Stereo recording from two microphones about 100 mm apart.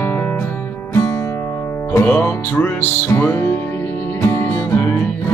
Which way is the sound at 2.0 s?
20° left (ahead or behind).